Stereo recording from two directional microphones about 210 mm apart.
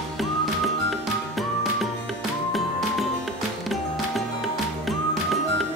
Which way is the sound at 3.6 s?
Centre (ahead or behind).